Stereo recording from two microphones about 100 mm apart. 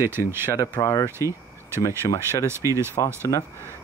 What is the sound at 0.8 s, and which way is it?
Speech, 35° left (ahead or behind).